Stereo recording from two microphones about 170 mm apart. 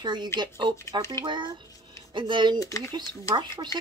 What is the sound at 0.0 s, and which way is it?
Speech, 25° right (ahead or behind).